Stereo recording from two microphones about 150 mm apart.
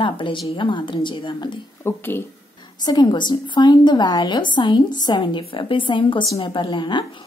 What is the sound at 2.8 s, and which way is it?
A woman's voice, 30° left (ahead or behind).